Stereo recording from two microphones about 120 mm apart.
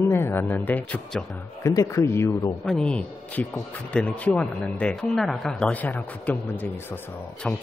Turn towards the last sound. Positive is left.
turn(degrees=5)  # may be behind; listen again after turning